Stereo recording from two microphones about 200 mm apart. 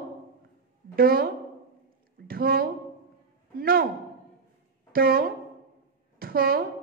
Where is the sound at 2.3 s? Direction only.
45° right (ahead or behind).